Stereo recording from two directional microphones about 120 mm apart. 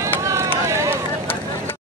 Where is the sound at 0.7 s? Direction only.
25° right (ahead or behind).